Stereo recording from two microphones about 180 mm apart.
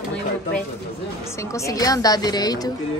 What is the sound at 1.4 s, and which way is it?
A woman's voice, 15° left (ahead or behind).